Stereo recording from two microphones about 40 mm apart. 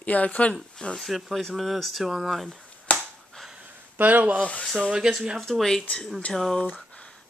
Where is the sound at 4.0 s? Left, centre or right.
Right.